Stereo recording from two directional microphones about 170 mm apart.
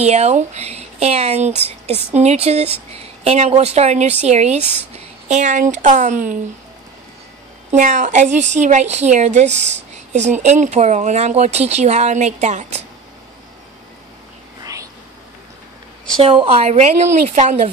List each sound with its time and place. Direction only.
0.0 s a woman's voice: 40° right (ahead or behind)
7.7 s speech: 45° right (ahead or behind)
14.6 s whispering: 20° right (ahead or behind)
16.2 s a woman's voice: 35° right (ahead or behind)